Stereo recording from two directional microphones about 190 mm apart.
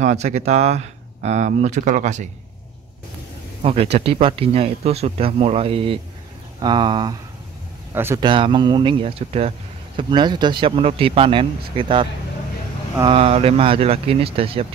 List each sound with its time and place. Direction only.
0.0 s speech: 35° right (ahead or behind)
3.6 s speech: 30° right (ahead or behind)
7.9 s speech: 10° right (ahead or behind)
8.2 s speech: 25° right (ahead or behind)